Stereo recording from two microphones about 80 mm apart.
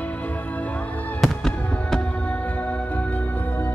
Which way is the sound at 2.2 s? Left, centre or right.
Centre.